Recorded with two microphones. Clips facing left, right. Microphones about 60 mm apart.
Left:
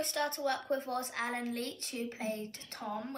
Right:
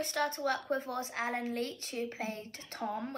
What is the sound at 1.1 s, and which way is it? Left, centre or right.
A woman's voice, right.